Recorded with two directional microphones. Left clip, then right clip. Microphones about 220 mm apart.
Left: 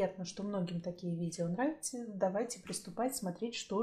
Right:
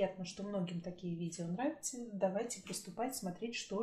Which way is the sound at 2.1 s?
35° left (ahead or behind).